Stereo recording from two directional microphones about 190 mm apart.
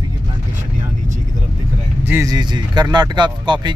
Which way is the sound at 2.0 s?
15° right (ahead or behind).